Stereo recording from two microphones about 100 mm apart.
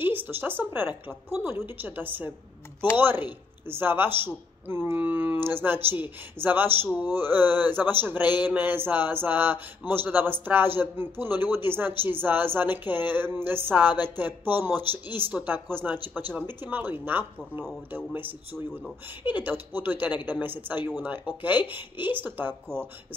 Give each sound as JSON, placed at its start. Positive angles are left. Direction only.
{"t": 0.0, "sound": "a man's voice", "side_deg": -20}
{"t": 8.2, "sound": "a sound", "side_deg": 45}
{"t": 8.5, "sound": "a man's voice", "side_deg": -20}